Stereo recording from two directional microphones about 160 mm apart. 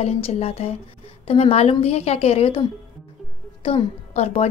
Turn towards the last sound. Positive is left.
turn(degrees=40)  # may be behind; listen again after turning